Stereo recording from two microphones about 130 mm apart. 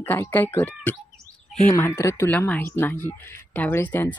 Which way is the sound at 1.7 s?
20° left (ahead or behind).